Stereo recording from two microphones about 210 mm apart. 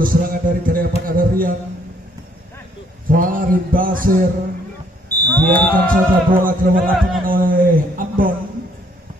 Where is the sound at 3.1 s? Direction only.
40° right (ahead or behind).